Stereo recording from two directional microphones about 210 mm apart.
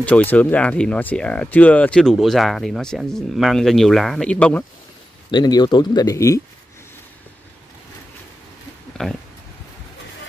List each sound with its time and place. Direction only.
0.0 s speech: 10° left (ahead or behind)
5.3 s speech: 20° left (ahead or behind)
8.9 s speech: centre (ahead or behind)